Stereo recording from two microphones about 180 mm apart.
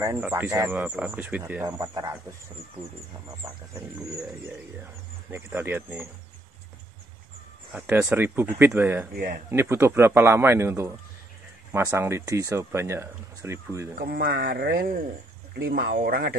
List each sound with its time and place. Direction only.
0.0 s speech: 15° right (ahead or behind)
5.3 s speech: 10° right (ahead or behind)
7.7 s speech: 10° right (ahead or behind)
9.1 s speech: 55° right (ahead or behind)
9.5 s speech: 15° right (ahead or behind)
13.9 s speech: 55° right (ahead or behind)